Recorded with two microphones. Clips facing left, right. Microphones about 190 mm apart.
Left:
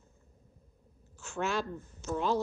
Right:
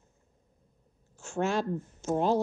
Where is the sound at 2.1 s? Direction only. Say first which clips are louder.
Right 4 dB; 50° right (ahead or behind).